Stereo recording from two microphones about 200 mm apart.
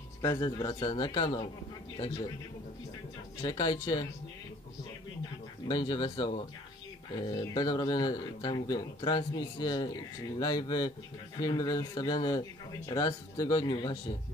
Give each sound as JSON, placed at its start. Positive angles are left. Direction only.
{"t": 0.2, "sound": "speech", "side_deg": 15}
{"t": 3.4, "sound": "speech", "side_deg": 20}
{"t": 5.7, "sound": "speech", "side_deg": 20}